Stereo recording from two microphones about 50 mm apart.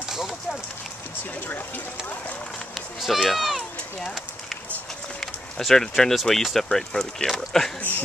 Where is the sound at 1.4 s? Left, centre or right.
Left.